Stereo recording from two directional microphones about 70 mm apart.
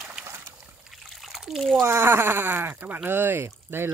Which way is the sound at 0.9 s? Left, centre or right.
Centre.